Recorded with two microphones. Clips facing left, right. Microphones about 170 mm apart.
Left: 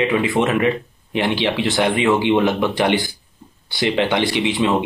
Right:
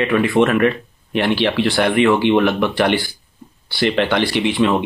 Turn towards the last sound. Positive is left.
turn(degrees=15)  # may be behind; listen again after turning